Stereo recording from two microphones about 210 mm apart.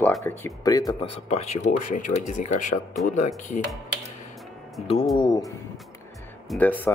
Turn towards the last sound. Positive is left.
turn(degrees=10)  # may be behind; listen again after turning